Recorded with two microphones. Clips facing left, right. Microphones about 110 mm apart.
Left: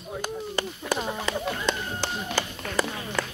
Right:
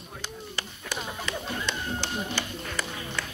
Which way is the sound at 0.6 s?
40° left (ahead or behind).